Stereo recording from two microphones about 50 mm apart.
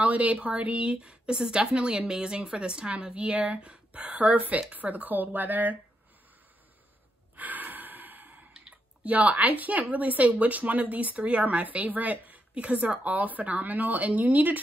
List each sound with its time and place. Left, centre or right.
0.0 s a woman's voice: right
7.3 s gasp: right
8.5 s speech: right